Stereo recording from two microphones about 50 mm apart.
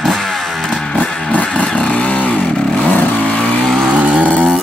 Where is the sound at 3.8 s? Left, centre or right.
Right.